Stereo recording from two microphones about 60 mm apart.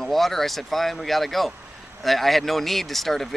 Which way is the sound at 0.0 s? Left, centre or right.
Centre.